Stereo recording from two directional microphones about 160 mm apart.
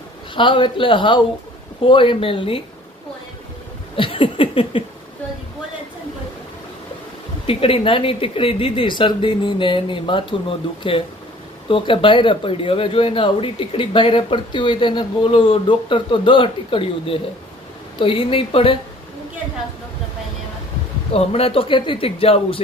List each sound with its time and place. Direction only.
0.4 s speech: 30° left (ahead or behind)
3.9 s a sound: 35° left (ahead or behind)
7.4 s speech: 35° left (ahead or behind)
21.1 s speech: 40° left (ahead or behind)